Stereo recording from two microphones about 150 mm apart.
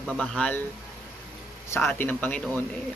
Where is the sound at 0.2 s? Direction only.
5° left (ahead or behind).